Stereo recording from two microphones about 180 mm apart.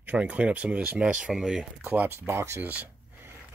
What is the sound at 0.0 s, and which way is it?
Speech, 10° right (ahead or behind).